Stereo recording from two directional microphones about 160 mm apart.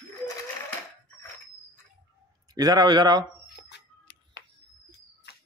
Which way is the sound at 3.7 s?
90° left.